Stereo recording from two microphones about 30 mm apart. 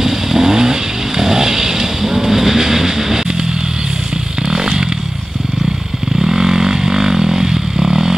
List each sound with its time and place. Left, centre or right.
0.0 s vehicle: centre
4.5 s motorcycle: right
6.1 s vehicle: centre